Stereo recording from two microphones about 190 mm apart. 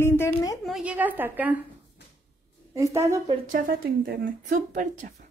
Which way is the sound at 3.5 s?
50° right (ahead or behind).